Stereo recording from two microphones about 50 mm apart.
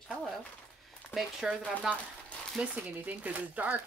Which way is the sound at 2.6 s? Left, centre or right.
Right.